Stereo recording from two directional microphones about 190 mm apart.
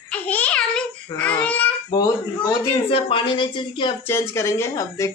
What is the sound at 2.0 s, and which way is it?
Speech, 25° left (ahead or behind).